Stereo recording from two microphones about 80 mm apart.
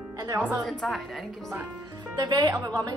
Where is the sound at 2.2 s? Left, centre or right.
Right.